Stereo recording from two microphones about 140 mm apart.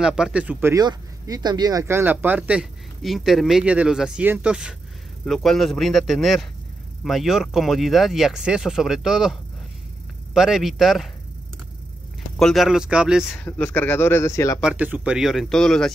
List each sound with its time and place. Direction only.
0.0 s speech: 5° right (ahead or behind)
0.7 s speech: 25° right (ahead or behind); by 11.1 s centre (ahead or behind)
12.4 s speech: centre (ahead or behind)
13.4 s speech: 15° left (ahead or behind)
14.6 s speech: 10° right (ahead or behind)